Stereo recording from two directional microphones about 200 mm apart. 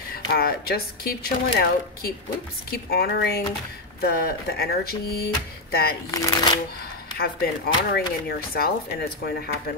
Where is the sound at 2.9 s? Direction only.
50° left (ahead or behind).